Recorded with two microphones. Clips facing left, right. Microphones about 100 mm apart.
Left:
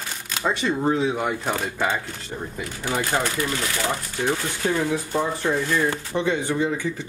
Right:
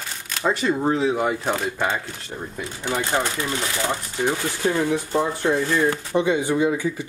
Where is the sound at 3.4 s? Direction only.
20° right (ahead or behind).